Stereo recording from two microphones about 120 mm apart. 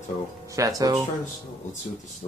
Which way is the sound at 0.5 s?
30° right (ahead or behind).